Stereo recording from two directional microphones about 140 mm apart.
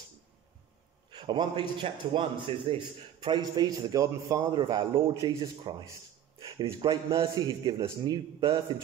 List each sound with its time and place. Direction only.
1.1 s a man's voice: 35° right (ahead or behind)
5.1 s speech: 25° right (ahead or behind)
6.4 s a man's voice: 40° right (ahead or behind)